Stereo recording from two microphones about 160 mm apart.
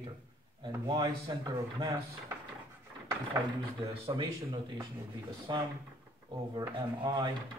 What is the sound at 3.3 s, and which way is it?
Speech, 15° right (ahead or behind).